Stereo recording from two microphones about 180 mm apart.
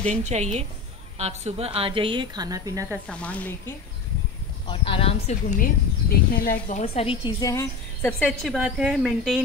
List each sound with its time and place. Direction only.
0.1 s a woman's voice: 40° right (ahead or behind); by 3.0 s 20° right (ahead or behind)
3.1 s speech: 10° left (ahead or behind)
4.6 s speech: 30° left (ahead or behind)
6.0 s speech: 55° left (ahead or behind)
6.8 s a woman's voice: 35° left (ahead or behind); by 8.1 s 15° left (ahead or behind)
8.2 s a woman's voice: 5° left (ahead or behind)